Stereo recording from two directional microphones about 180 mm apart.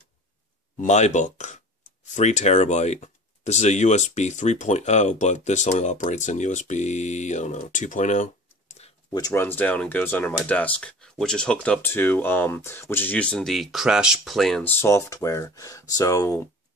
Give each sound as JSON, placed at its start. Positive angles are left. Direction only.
{"t": 0.7, "sound": "speech", "side_deg": 40}
{"t": 9.1, "sound": "speech", "side_deg": 15}